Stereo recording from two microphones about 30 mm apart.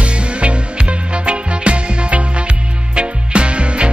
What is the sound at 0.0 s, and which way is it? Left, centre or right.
Music, right.